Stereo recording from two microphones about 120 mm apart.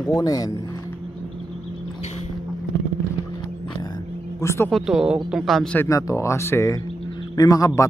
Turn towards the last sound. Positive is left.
turn(degrees=30)  # may be behind; listen again after turning